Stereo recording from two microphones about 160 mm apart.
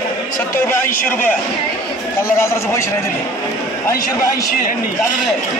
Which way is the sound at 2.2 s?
15° left (ahead or behind).